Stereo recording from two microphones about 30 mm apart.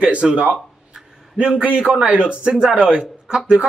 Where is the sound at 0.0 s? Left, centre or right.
Right.